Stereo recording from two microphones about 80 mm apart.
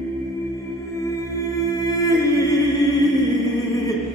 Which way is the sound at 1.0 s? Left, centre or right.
Left.